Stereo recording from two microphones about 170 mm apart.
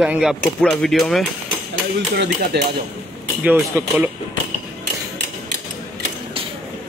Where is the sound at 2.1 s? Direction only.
80° right.